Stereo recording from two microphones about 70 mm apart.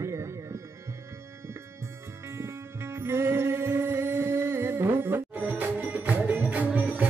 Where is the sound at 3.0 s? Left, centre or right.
Right.